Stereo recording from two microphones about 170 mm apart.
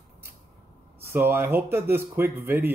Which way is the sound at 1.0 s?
15° right (ahead or behind).